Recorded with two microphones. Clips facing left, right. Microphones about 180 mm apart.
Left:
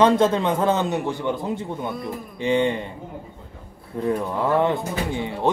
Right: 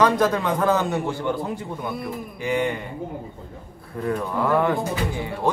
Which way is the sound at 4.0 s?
20° left (ahead or behind).